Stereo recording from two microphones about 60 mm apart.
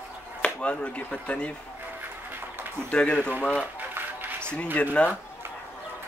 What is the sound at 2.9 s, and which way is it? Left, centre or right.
Speech, centre.